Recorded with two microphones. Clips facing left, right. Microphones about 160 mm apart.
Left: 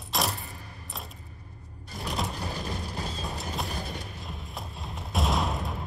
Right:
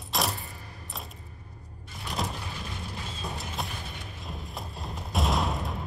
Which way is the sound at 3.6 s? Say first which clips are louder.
Left 4 dB; 40° left (ahead or behind).